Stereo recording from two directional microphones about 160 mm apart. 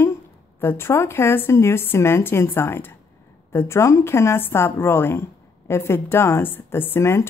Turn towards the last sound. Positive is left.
turn(degrees=15)  # may be behind; listen again after turning